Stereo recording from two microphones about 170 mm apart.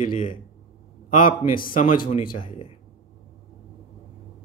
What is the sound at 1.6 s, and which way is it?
Speech, 55° left (ahead or behind).